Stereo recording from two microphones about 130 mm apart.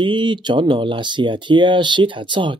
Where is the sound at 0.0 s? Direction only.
35° right (ahead or behind).